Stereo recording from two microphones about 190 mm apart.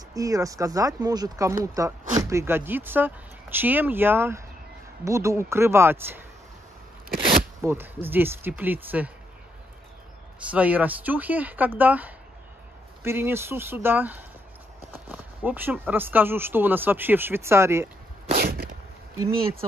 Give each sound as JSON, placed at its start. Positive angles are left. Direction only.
{"t": 0.1, "sound": "speech", "side_deg": -20}
{"t": 7.6, "sound": "speech", "side_deg": -10}
{"t": 10.5, "sound": "speech", "side_deg": -5}
{"t": 18.3, "sound": "a sound", "side_deg": -50}